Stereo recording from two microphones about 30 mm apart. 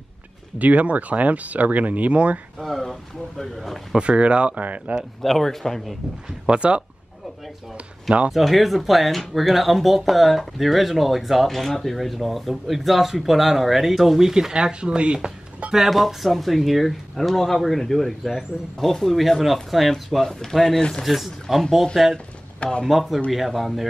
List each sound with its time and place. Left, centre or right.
0.6 s speech: right
2.8 s speech: centre
4.0 s speech: right
4.6 s speech: right
5.2 s speech: centre
6.4 s speech: right
7.7 s speech: right
8.3 s speech: centre
14.5 s speech: right
15.9 s speech: centre
20.2 s speech: centre
21.0 s speech: centre
22.6 s speech: left
22.8 s speech: centre